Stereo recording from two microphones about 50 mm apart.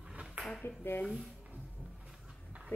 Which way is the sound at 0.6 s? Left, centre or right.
Left.